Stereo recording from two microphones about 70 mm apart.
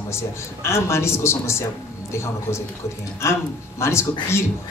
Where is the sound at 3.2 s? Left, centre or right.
Left.